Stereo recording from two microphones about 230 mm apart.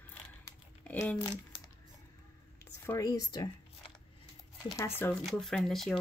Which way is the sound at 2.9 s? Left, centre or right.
Centre.